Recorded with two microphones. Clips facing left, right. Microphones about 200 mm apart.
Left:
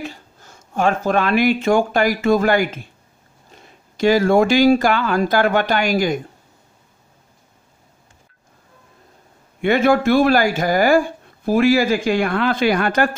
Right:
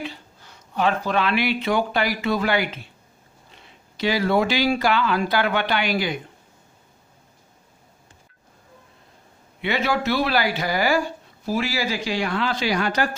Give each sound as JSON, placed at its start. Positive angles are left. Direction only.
{"t": 0.0, "sound": "speech", "side_deg": 45}
{"t": 9.6, "sound": "speech", "side_deg": 50}